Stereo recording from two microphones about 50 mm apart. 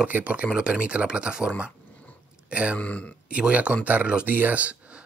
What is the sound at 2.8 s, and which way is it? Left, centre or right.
Speech, left.